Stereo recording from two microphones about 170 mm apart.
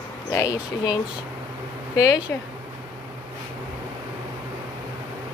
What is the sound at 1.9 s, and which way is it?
Speech, 20° left (ahead or behind).